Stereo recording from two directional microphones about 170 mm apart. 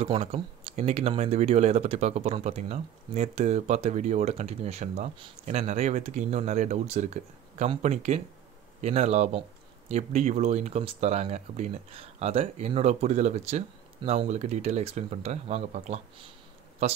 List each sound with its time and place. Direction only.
0.0 s speech: 35° right (ahead or behind)